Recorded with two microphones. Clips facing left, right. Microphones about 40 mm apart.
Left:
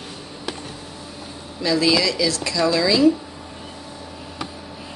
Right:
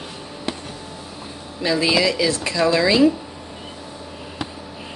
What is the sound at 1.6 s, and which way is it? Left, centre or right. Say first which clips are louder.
Speech: even; right.